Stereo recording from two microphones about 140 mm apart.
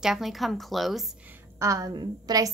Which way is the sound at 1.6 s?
25° right (ahead or behind).